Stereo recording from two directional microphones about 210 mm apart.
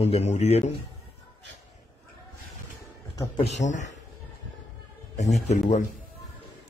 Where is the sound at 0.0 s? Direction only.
30° left (ahead or behind).